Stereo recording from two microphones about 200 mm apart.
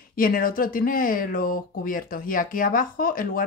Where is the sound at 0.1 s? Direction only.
45° left (ahead or behind).